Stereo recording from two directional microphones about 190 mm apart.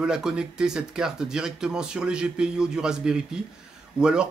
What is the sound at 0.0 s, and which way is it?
Speech, 5° right (ahead or behind).